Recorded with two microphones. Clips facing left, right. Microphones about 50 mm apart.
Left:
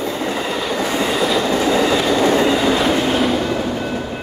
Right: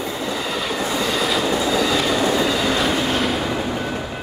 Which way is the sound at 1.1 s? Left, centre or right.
Centre.